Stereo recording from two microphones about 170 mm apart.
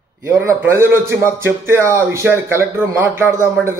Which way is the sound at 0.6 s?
15° right (ahead or behind).